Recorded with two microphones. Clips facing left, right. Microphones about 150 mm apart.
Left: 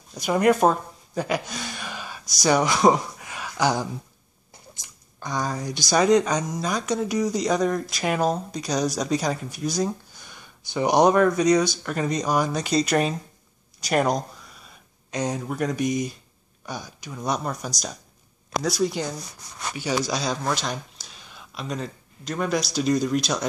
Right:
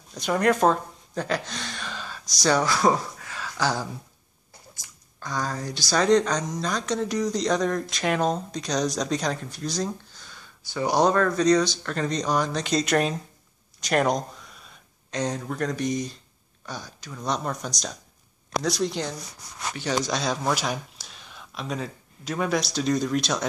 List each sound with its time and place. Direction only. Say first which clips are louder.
0.1 s gasp: left 3 dB; 10° left (ahead or behind)
2.4 s speech: left 3 dB; 15° left (ahead or behind)